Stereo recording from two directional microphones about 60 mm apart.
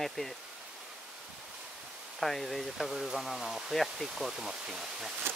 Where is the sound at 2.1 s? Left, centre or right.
Centre.